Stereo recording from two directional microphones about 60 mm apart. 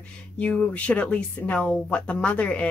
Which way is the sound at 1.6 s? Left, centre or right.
Centre.